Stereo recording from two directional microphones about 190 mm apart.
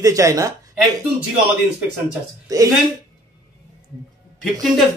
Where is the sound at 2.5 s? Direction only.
20° right (ahead or behind).